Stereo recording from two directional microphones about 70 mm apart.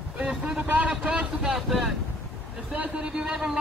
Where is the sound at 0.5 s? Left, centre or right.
Right.